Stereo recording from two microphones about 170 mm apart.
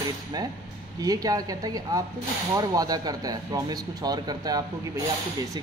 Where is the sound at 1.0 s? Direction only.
20° right (ahead or behind).